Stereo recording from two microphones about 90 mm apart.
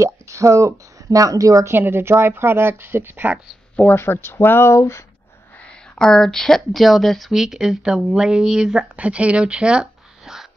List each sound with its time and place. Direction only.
0.0 s speech: 35° right (ahead or behind)
1.7 s a woman's voice: 25° right (ahead or behind)
3.9 s speech: 25° left (ahead or behind)
5.9 s speech: 5° left (ahead or behind)